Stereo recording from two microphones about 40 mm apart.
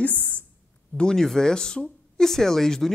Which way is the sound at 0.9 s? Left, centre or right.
Centre.